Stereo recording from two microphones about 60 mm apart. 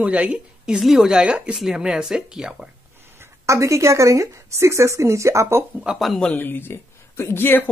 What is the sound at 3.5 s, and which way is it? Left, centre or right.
A woman's voice, right.